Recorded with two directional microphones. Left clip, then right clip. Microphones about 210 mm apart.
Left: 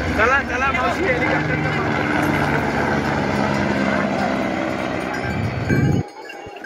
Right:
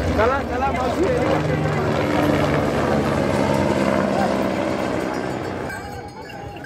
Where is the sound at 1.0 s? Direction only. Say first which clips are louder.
Left 1 dB; 35° right (ahead or behind).